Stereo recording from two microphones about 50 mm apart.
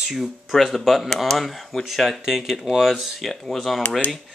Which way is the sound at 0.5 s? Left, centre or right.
Centre.